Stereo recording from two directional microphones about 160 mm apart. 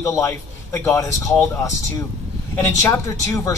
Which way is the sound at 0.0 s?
20° left (ahead or behind).